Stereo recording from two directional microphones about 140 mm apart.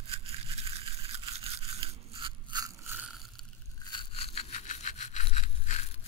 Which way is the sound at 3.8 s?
35° left (ahead or behind).